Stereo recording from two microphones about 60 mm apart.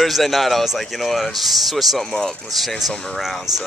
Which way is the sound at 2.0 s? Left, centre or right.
Centre.